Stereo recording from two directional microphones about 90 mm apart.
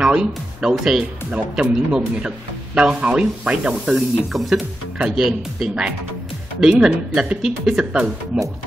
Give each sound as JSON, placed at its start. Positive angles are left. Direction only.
{"t": 0.0, "sound": "speech", "side_deg": -10}